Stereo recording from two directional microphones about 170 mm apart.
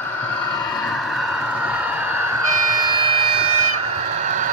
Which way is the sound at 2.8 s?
25° right (ahead or behind).